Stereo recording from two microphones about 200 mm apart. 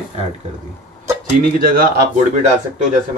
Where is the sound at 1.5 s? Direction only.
45° right (ahead or behind).